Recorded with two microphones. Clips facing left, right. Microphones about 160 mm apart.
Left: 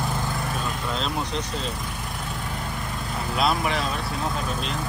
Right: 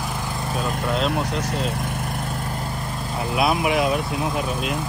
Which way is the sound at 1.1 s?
65° right (ahead or behind).